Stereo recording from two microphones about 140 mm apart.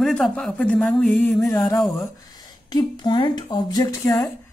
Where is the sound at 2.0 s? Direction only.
30° left (ahead or behind).